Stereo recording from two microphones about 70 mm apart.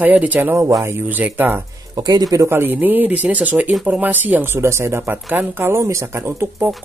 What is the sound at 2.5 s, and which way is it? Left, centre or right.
Speech, right.